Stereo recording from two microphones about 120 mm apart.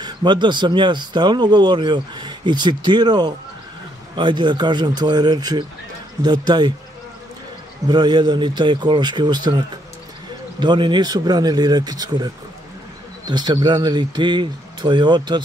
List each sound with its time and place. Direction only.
0.0 s speech: 40° right (ahead or behind)
7.9 s speech: 35° right (ahead or behind)
10.6 s speech: 40° right (ahead or behind)